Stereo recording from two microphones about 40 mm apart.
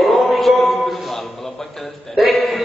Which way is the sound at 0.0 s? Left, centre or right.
Centre.